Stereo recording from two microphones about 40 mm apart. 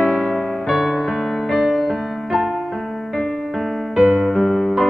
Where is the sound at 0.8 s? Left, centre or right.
Centre.